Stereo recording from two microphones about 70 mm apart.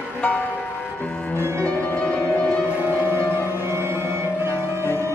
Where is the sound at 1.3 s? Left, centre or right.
Right.